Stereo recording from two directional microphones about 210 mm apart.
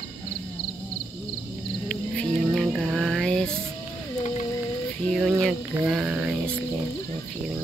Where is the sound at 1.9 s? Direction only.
Centre (ahead or behind).